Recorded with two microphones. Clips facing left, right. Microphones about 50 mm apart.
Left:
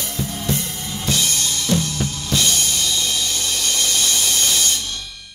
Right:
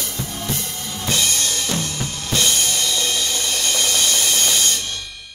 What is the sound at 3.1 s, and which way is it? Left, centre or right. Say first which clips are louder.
Music: right 1 dB; right.